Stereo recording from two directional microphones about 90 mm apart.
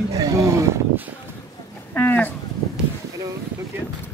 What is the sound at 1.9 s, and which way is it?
Speech, 20° left (ahead or behind).